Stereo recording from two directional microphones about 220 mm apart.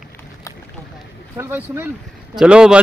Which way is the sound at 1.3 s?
10° right (ahead or behind).